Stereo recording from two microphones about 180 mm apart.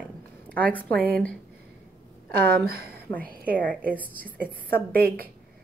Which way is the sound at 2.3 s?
55° right (ahead or behind).